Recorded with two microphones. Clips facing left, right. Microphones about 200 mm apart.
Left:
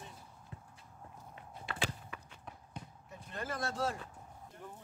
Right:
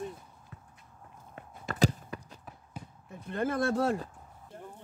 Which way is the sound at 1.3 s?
40° right (ahead or behind).